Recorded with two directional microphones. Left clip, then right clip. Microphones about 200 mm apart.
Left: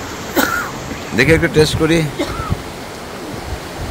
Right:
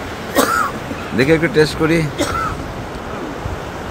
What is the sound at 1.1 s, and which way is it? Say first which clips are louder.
Speech: left 1 dB; 5° left (ahead or behind).